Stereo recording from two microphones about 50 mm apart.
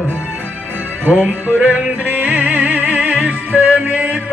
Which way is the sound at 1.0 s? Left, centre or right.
Right.